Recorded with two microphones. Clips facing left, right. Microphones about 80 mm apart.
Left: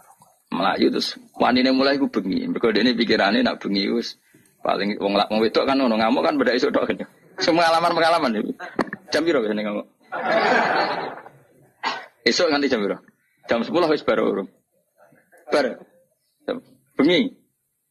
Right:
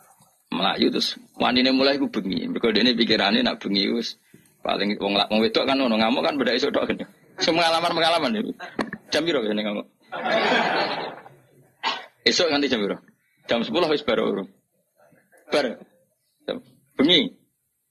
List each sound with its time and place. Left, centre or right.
0.5 s a man's voice: centre
4.6 s speech: centre
5.0 s a man's voice: centre
8.4 s a sound: centre
9.4 s speech: centre
9.8 s chuckle: centre
11.8 s speech: left
15.0 s a sound: left